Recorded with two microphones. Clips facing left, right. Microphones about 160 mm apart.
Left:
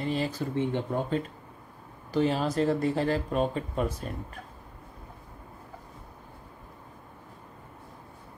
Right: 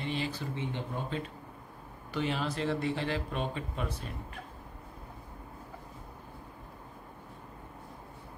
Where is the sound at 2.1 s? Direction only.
40° left (ahead or behind).